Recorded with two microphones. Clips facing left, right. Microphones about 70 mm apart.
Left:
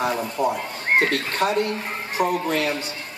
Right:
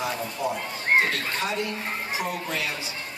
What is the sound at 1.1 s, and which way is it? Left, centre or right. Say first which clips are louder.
A man's voice: left 6 dB; left.